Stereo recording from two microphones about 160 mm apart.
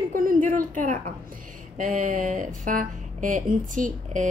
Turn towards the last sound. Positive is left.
turn(degrees=-55)  # may be behind; listen again after turning